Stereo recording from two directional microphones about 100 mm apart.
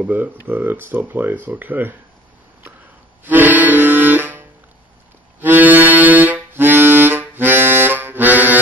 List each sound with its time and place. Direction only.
0.0 s speech: 15° right (ahead or behind)
3.3 s accordion: 20° right (ahead or behind)
5.4 s music: 20° right (ahead or behind)